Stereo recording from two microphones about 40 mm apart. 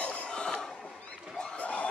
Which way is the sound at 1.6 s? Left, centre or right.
Left.